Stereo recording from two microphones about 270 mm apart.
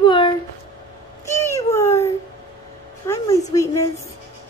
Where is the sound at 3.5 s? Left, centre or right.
Centre.